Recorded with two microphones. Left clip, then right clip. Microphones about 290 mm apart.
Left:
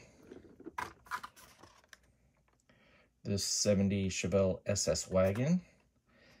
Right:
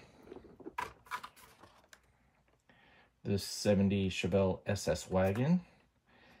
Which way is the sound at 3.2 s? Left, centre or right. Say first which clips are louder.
Left 2 dB; centre.